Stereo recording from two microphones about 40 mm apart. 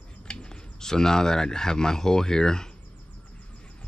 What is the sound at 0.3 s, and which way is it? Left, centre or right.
Speech, left.